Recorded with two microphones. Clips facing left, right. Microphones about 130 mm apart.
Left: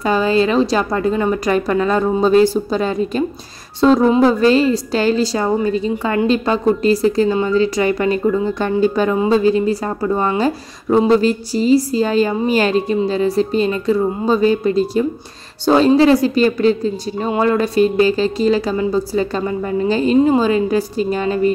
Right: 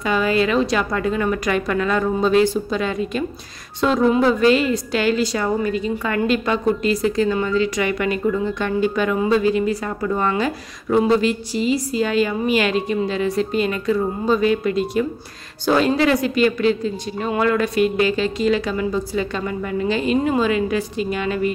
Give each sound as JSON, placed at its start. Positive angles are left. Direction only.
{"t": 0.0, "sound": "a woman's voice", "side_deg": 30}